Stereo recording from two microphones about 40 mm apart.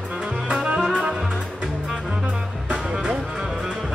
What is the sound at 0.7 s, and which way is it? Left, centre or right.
Music, right.